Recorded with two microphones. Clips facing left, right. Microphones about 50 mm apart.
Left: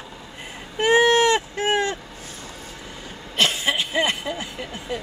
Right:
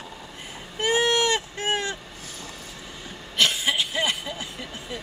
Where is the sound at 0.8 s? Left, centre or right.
Left.